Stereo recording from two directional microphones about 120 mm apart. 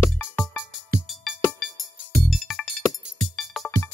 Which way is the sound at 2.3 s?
Centre (ahead or behind).